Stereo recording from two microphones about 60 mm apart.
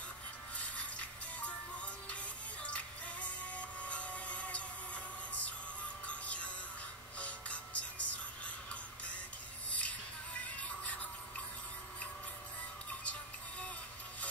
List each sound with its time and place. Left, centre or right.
0.6 s music: left
9.7 s music: left
10.5 s a sound: left
13.0 s music: left